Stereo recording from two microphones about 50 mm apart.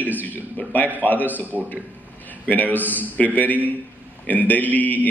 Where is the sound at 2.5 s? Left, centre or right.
Left.